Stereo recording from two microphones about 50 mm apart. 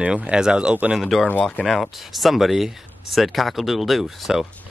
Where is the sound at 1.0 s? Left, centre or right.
Centre.